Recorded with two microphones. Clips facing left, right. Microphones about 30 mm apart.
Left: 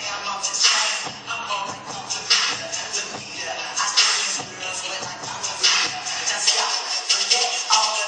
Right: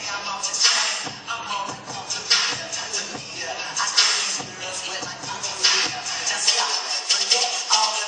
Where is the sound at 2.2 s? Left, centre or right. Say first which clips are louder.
Left 1 dB; left.